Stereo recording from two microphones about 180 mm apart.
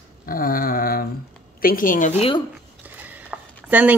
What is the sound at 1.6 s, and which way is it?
Speech, 50° left (ahead or behind).